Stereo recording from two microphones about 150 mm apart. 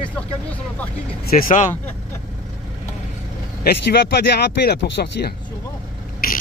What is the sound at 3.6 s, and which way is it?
Speech, 90° left.